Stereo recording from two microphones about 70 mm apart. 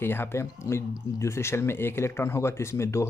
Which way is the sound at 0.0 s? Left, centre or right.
Left.